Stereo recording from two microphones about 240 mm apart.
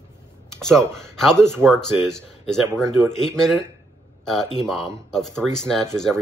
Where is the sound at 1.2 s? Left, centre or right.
Centre.